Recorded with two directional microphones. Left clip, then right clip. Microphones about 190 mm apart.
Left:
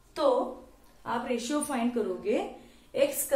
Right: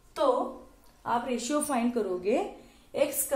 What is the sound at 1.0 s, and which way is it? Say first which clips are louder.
A woman's voice: right 2 dB; 30° right (ahead or behind).